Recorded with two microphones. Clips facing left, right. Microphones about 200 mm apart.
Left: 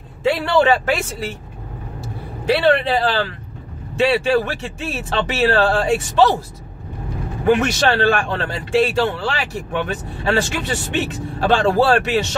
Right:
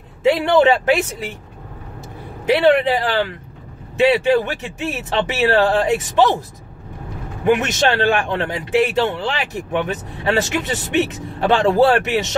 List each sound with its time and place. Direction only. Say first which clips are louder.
0.2 s a man's voice: right 3 dB; 20° right (ahead or behind)
2.4 s speech: right 2 dB; 20° right (ahead or behind)
7.4 s a man's voice: even; 20° right (ahead or behind)